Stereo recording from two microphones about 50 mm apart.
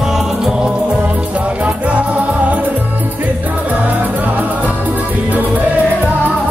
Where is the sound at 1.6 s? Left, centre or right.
Right.